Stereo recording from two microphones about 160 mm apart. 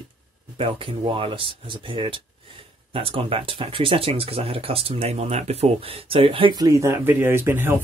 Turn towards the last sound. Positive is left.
turn(degrees=-15)  # may be behind; listen again after turning